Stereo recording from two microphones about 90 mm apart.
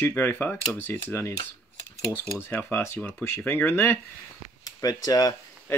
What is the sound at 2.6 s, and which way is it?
Speech, 30° left (ahead or behind).